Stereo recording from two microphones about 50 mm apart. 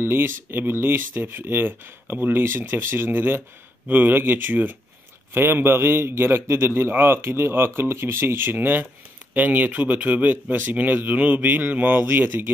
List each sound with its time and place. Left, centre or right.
0.0 s speech: right
5.3 s speech: right